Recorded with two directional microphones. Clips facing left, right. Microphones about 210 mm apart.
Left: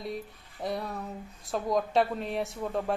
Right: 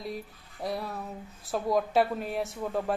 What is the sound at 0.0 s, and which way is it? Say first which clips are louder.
Speech: left 1 dB; centre (ahead or behind).